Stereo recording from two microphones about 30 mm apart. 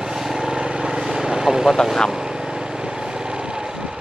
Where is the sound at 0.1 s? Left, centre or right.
Centre.